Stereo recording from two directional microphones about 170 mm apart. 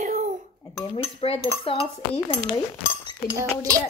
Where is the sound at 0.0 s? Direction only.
50° right (ahead or behind).